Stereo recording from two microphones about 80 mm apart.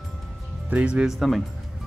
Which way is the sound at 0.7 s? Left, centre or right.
Centre.